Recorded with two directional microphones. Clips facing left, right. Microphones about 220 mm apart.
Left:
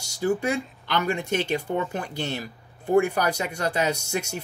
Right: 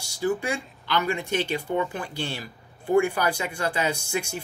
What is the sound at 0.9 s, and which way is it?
Speech, 45° left (ahead or behind).